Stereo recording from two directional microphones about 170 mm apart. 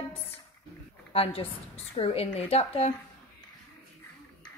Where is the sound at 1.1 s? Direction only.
35° left (ahead or behind).